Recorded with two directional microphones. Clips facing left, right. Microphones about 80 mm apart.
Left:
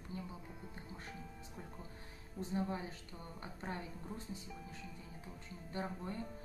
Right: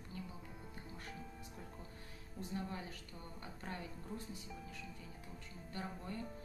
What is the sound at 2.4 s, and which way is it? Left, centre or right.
A woman's voice, left.